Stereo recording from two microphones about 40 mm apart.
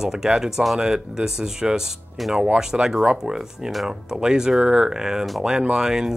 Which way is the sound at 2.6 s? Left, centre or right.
Centre.